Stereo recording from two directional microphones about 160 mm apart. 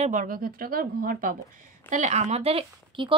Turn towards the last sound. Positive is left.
turn(degrees=-35)  # may be behind; listen again after turning